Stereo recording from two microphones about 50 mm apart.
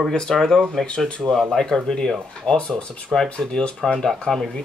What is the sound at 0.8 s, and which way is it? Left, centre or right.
Speech, centre.